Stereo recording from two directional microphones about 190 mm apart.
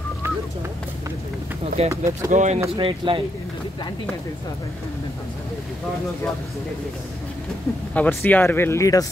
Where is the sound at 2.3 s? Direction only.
40° right (ahead or behind).